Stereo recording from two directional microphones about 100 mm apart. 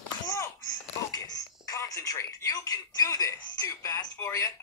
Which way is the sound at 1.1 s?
40° left (ahead or behind).